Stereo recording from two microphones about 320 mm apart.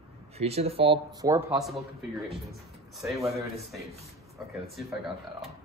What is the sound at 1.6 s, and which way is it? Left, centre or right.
A man's voice, centre.